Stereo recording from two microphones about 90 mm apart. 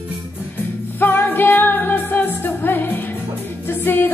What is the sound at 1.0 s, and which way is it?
Music, 20° left (ahead or behind).